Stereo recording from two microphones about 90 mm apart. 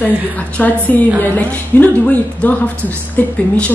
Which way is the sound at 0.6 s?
20° left (ahead or behind).